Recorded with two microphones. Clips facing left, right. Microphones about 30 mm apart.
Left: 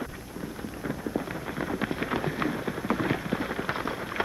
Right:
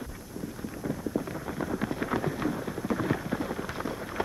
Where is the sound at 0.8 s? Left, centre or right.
Left.